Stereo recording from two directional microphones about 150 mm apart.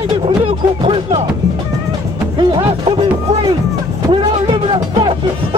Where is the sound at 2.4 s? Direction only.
35° right (ahead or behind).